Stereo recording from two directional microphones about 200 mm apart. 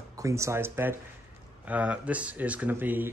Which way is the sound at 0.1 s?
15° right (ahead or behind).